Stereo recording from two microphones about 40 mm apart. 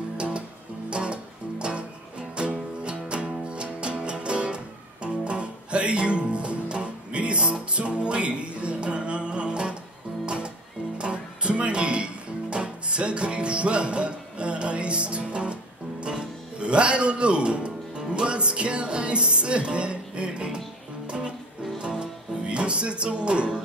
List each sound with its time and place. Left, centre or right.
0.8 s music: right
21.7 s music: right